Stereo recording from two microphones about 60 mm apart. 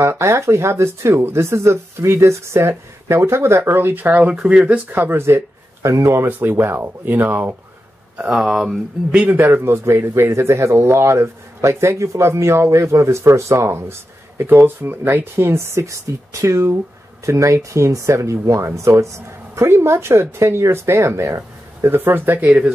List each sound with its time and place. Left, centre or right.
0.0 s speech: right; by 4.8 s centre
4.9 s speech: right
5.8 s speech: right
8.2 s speech: centre
9.4 s speech: right
14.4 s speech: right
21.8 s speech: right